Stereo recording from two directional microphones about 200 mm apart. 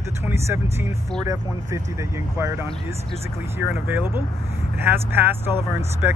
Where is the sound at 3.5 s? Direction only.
10° right (ahead or behind).